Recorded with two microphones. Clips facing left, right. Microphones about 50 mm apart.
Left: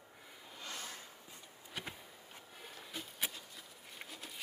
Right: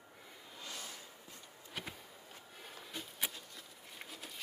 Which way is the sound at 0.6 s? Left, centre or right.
Left.